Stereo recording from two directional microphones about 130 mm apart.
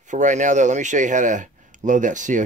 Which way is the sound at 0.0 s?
70° right (ahead or behind).